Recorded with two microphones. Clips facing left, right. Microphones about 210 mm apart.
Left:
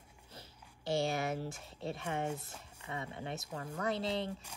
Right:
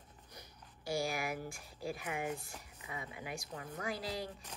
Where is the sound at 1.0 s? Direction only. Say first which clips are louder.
Left 3 dB; 25° left (ahead or behind).